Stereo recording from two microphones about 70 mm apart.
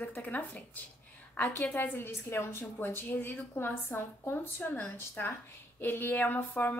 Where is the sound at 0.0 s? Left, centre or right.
Left.